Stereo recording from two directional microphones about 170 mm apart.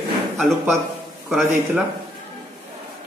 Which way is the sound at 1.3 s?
Centre (ahead or behind).